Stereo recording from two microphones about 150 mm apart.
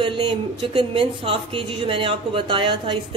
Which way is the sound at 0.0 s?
35° right (ahead or behind).